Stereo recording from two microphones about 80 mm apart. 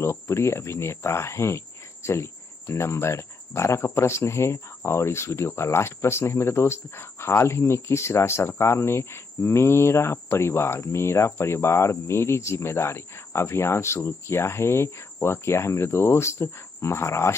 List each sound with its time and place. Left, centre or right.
0.0 s speech: left